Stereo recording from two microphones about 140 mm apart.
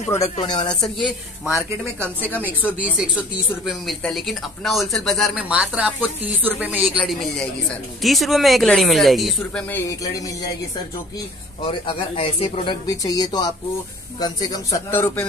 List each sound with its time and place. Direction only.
0.4 s speech: 35° left (ahead or behind)
0.7 s speech: centre (ahead or behind)
2.4 s speech: 10° right (ahead or behind)
3.6 s speech: centre (ahead or behind)
5.5 s speech: 10° right (ahead or behind)
7.1 s speech: centre (ahead or behind)
9.8 s speech: 25° left (ahead or behind)
11.6 s speech: 40° left (ahead or behind)
12.8 s speech: 25° left (ahead or behind)
14.9 s speech: 15° left (ahead or behind)